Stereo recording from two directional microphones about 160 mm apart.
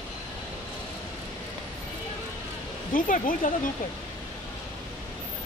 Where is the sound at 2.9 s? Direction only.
60° left (ahead or behind).